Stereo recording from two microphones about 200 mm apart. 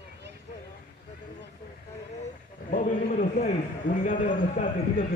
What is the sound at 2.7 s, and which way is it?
A man's voice, 40° left (ahead or behind).